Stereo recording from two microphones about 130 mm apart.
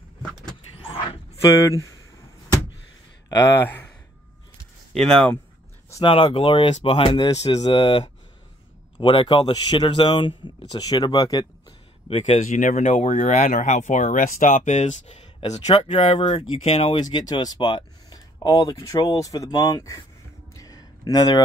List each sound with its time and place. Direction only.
3.3 s speech: 25° left (ahead or behind)
3.6 s speech: 15° left (ahead or behind)
4.9 s speech: 5° left (ahead or behind)
6.0 s speech: 40° left (ahead or behind)
9.0 s speech: 40° left (ahead or behind)
12.1 s speech: 55° left (ahead or behind)
17.0 s speech: 30° left (ahead or behind)
20.5 s a sound: 30° left (ahead or behind)